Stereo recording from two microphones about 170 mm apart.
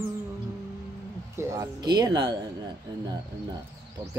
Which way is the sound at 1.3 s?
15° right (ahead or behind).